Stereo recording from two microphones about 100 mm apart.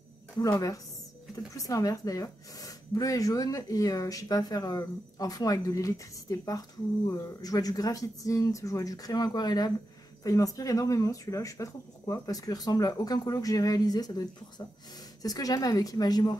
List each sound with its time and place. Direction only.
0.4 s speech: 35° left (ahead or behind)
15.2 s speech: 40° left (ahead or behind)